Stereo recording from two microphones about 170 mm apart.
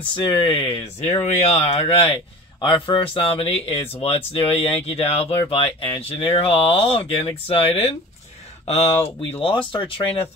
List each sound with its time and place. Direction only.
0.1 s speech: 30° left (ahead or behind)